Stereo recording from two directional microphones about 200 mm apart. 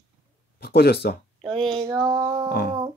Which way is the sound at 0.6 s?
55° left (ahead or behind).